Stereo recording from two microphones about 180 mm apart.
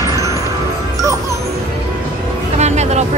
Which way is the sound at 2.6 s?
40° right (ahead or behind).